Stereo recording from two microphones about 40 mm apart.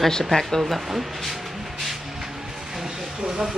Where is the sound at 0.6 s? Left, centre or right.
Centre.